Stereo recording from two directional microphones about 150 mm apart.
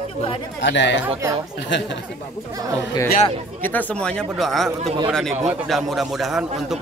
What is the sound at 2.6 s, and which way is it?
Speech, 25° right (ahead or behind).